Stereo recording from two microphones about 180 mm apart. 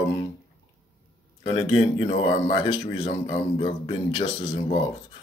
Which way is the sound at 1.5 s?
30° left (ahead or behind).